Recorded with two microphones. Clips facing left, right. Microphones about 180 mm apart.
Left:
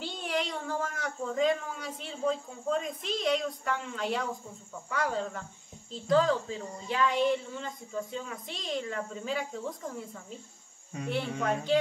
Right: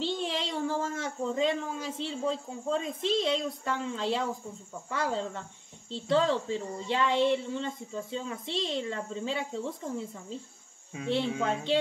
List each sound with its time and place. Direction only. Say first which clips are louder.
0.0 s a child's voice: right 2 dB; 25° right (ahead or behind)
11.4 s speech: left 4 dB; 25° right (ahead or behind)